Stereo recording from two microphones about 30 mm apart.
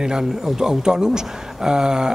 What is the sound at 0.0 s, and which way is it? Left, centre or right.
Speech, right.